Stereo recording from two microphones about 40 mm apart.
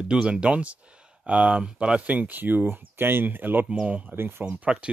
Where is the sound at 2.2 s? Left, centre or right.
Right.